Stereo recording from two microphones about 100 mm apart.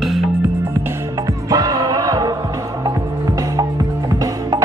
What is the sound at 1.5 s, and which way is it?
Music, 40° right (ahead or behind).